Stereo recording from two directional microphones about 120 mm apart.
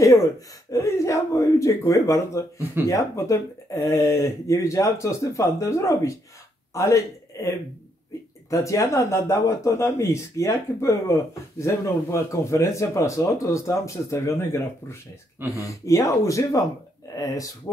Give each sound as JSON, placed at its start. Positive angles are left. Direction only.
{"t": 0.7, "sound": "speech", "side_deg": 25}